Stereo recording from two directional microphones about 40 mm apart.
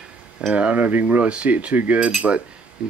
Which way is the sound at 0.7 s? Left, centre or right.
Right.